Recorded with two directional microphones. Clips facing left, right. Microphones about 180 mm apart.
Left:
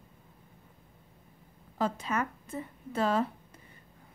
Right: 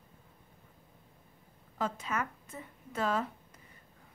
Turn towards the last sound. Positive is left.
turn(degrees=30)  # may be behind; listen again after turning